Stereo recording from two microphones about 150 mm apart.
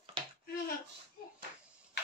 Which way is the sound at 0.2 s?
35° right (ahead or behind).